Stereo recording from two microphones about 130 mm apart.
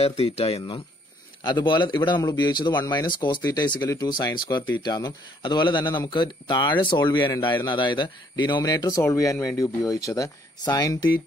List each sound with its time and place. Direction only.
0.0 s speech: 50° left (ahead or behind)
1.4 s speech: 35° left (ahead or behind)